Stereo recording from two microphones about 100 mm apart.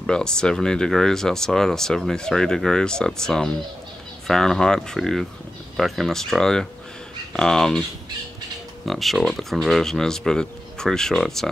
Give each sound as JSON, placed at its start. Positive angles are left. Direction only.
{"t": 0.0, "sound": "speech", "side_deg": 5}
{"t": 8.8, "sound": "speech", "side_deg": 0}